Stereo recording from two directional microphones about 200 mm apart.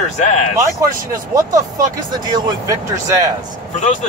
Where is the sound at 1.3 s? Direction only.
15° right (ahead or behind).